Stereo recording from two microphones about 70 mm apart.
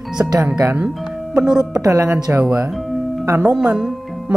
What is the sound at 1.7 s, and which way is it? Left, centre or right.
Speech, right.